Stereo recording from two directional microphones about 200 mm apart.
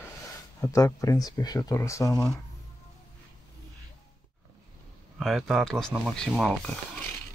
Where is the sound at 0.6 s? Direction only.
15° left (ahead or behind).